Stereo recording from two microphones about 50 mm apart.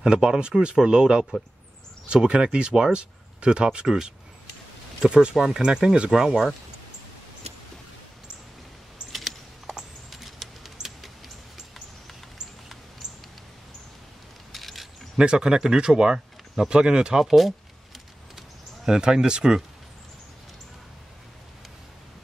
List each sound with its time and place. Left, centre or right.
0.0 s speech: centre
2.2 s speech: centre
9.1 s typing: centre
9.8 s a sound: centre
14.5 s keys jangling: centre
15.1 s speech: centre
18.9 s speech: centre